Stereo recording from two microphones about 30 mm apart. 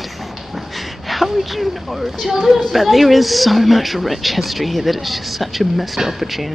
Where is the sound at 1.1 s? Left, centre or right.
Centre.